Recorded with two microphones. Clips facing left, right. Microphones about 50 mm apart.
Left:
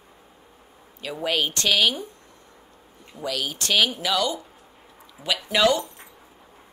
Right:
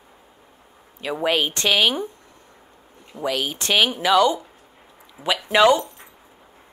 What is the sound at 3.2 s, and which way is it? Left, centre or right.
Speech, right.